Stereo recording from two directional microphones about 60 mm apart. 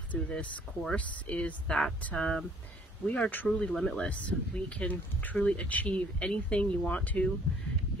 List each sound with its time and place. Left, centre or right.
0.1 s speech: left
3.1 s speech: left
3.4 s speech: centre; by 7.2 s left